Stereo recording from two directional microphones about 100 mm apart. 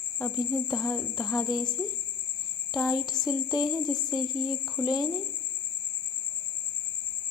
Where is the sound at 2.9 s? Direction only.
45° left (ahead or behind).